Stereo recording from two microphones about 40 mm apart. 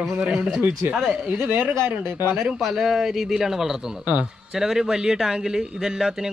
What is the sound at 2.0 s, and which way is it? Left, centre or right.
Speech, right.